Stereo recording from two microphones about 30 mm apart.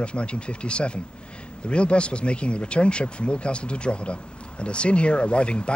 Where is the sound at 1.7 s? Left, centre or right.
Left.